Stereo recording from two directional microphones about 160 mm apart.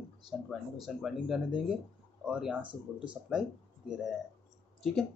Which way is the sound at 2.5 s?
30° right (ahead or behind).